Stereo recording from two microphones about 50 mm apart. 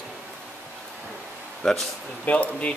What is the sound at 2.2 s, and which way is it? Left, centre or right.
Speech, left.